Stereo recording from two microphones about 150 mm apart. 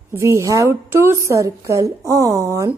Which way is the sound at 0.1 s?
20° right (ahead or behind).